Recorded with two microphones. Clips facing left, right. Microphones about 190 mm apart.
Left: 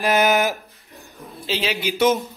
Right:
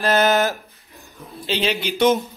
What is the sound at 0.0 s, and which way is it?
Speech, 15° left (ahead or behind).